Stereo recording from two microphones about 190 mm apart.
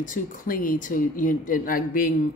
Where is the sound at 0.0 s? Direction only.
45° left (ahead or behind).